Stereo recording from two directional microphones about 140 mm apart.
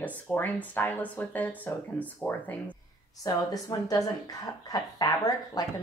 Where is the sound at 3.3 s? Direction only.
25° left (ahead or behind).